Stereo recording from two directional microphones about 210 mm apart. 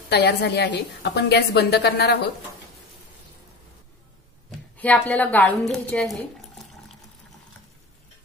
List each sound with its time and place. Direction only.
0.1 s a woman's voice: 55° left (ahead or behind)
4.5 s a woman's voice: 5° left (ahead or behind)